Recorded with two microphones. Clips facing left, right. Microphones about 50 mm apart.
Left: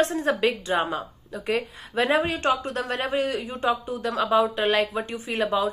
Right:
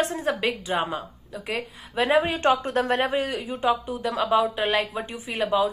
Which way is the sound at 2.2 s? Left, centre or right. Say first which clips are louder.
Right 2 dB; right.